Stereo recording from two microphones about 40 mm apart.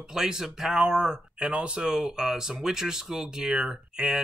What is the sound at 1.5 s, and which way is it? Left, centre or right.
Speech, right.